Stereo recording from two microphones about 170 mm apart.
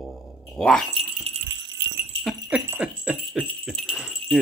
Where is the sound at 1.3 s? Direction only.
35° right (ahead or behind).